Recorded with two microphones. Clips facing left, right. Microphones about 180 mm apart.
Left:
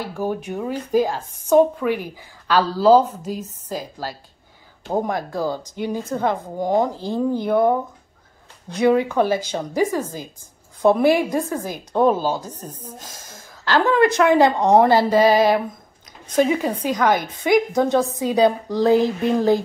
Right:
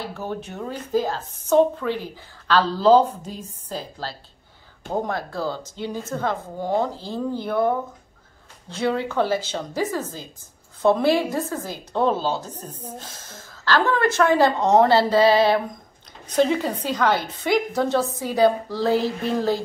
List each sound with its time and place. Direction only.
0.0 s a woman's voice: 10° left (ahead or behind)